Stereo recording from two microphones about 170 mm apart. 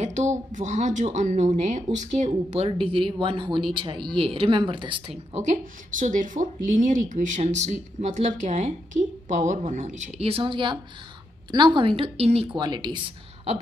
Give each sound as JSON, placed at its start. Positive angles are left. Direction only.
{"t": 0.0, "sound": "speech", "side_deg": -45}
{"t": 5.3, "sound": "a woman's voice", "side_deg": -45}